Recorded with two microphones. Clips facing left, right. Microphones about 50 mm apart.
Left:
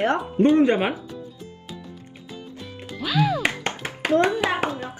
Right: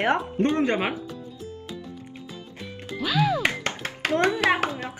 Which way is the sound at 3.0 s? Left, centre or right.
Centre.